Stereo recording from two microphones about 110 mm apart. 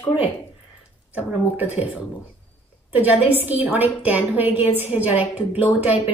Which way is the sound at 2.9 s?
15° right (ahead or behind).